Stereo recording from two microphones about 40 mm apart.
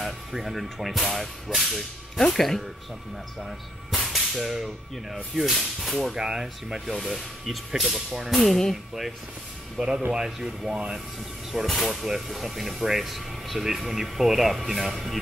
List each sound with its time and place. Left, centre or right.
0.0 s speech: centre
3.4 s whip: centre
5.3 s speech: centre
6.1 s speech: centre
8.4 s speech: centre
9.8 s speech: centre
11.6 s speech: centre